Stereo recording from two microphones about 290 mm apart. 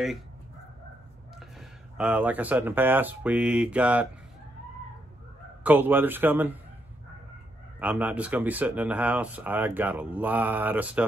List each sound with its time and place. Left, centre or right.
1.6 s speech: centre
5.6 s speech: centre
7.8 s speech: centre